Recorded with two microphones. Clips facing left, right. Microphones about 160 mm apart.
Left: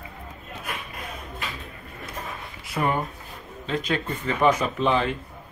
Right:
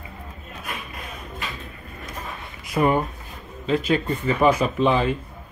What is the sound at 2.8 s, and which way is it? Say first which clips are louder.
A man's voice: right 5 dB; 15° right (ahead or behind).